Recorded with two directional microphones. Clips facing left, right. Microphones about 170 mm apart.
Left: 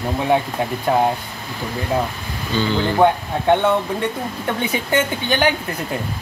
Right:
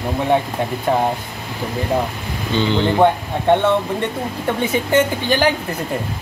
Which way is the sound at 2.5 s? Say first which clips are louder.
Right 2 dB; 25° right (ahead or behind).